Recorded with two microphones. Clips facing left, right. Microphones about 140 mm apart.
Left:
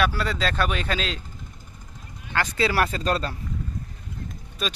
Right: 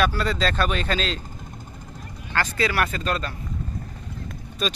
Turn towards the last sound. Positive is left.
turn(degrees=10)  # may be behind; listen again after turning